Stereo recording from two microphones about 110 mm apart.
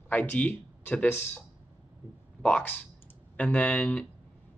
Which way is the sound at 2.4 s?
15° left (ahead or behind).